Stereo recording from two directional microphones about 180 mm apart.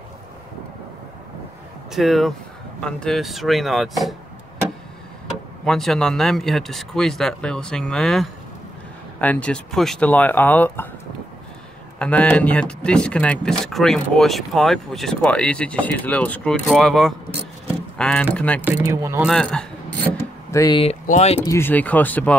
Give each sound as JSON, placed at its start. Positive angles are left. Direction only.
{"t": 1.9, "sound": "speech", "side_deg": 0}
{"t": 5.7, "sound": "speech", "side_deg": 0}
{"t": 12.0, "sound": "speech", "side_deg": 5}
{"t": 18.8, "sound": "speech", "side_deg": -15}
{"t": 19.2, "sound": "speech", "side_deg": 5}
{"t": 20.5, "sound": "speech", "side_deg": 20}
{"t": 20.8, "sound": "speech", "side_deg": 35}
{"t": 21.5, "sound": "speech", "side_deg": 10}